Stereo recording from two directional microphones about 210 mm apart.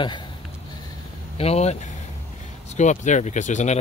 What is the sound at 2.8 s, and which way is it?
Speech, 35° left (ahead or behind).